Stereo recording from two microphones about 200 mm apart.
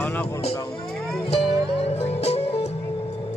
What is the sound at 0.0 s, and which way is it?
Music, 10° left (ahead or behind).